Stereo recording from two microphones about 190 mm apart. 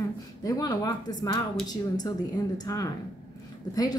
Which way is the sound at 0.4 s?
20° left (ahead or behind).